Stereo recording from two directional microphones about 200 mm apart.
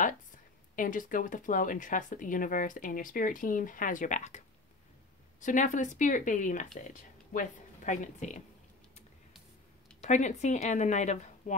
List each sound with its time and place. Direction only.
0.7 s speech: 40° left (ahead or behind)
5.4 s speech: 40° left (ahead or behind)
10.0 s speech: 35° left (ahead or behind)